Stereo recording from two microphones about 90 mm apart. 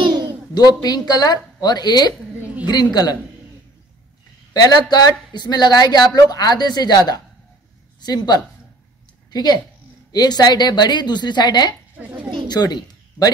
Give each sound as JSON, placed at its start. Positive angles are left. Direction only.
{"t": 0.6, "sound": "a woman's voice", "side_deg": 50}
{"t": 4.6, "sound": "a woman's voice", "side_deg": 45}